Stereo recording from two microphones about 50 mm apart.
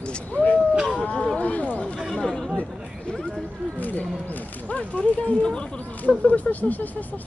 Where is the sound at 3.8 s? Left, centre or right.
Left; by 5.7 s centre.